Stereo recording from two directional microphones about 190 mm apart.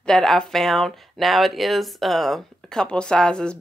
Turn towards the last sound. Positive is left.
turn(degrees=5)  # may be behind; listen again after turning